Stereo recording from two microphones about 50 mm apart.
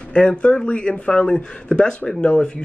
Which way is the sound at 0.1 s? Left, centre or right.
Centre.